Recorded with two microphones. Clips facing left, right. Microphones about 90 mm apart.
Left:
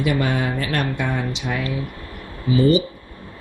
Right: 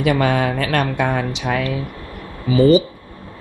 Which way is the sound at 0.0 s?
80° right.